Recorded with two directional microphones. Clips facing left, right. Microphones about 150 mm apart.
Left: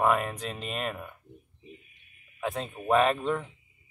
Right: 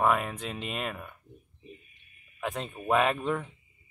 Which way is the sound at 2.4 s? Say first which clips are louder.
Left 2 dB; centre (ahead or behind).